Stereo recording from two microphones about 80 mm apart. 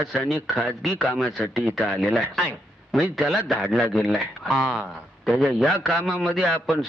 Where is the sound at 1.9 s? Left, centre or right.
Centre.